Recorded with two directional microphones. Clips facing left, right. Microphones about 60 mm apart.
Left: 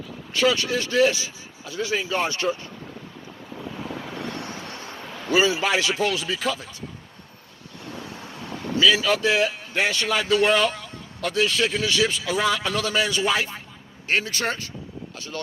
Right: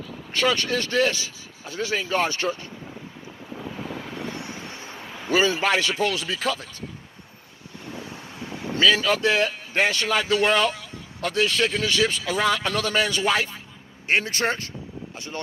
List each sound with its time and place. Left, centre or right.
0.4 s speech: centre
1.6 s speech: right
2.0 s speech: centre
4.0 s vehicle: centre
4.4 s vehicle: centre
5.3 s speech: centre
6.1 s speech: centre
8.8 s a man's voice: centre
14.0 s speech: right